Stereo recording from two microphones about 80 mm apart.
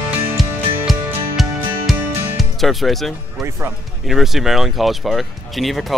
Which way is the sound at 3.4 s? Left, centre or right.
Right.